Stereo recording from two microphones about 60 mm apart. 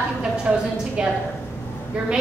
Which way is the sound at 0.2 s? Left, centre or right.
Centre.